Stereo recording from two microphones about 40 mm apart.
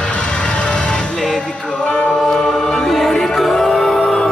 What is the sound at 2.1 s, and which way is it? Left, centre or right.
Music, centre.